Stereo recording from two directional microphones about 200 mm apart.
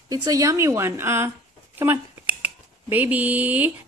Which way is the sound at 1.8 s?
10° right (ahead or behind).